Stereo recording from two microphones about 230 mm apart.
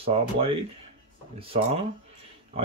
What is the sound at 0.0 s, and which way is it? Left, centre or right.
Speech, right.